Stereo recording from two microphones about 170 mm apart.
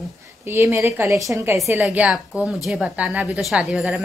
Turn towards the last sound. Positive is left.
turn(degrees=-5)  # may be behind; listen again after turning